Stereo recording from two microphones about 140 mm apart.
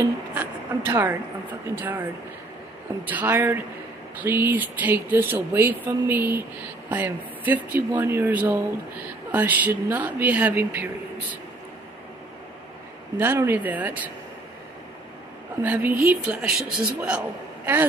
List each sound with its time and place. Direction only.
0.0 s speech: 15° right (ahead or behind)
3.1 s speech: 15° right (ahead or behind)
13.2 s speech: 15° right (ahead or behind)
15.6 s speech: 10° right (ahead or behind)